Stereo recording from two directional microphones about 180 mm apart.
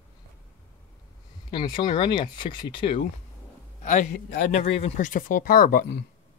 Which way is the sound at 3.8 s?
45° left (ahead or behind).